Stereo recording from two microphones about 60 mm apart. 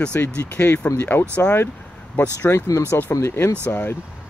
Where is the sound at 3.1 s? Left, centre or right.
Left.